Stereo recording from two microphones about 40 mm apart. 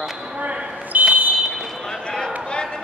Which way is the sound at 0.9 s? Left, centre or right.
Right.